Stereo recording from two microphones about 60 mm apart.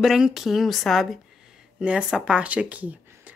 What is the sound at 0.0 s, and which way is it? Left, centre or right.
Speech, centre.